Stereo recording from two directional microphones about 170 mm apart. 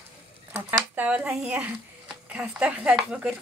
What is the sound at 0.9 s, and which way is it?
Speech, 10° right (ahead or behind).